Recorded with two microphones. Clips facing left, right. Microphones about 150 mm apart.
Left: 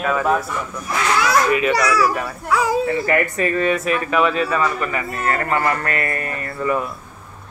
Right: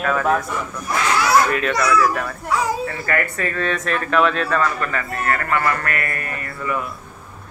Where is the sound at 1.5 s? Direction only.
5° left (ahead or behind).